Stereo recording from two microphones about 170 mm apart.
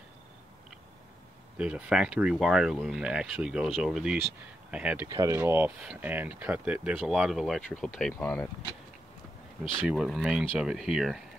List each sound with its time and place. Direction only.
1.6 s speech: 5° right (ahead or behind)
5.1 s speech: 20° right (ahead or behind); by 8.5 s 10° left (ahead or behind)
9.8 s speech: centre (ahead or behind)